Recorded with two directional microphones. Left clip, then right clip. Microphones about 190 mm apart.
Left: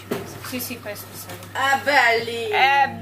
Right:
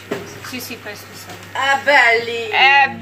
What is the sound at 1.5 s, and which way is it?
Speech, 45° left (ahead or behind).